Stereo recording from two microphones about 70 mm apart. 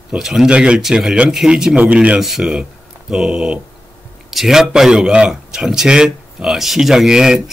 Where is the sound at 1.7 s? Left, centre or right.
Centre.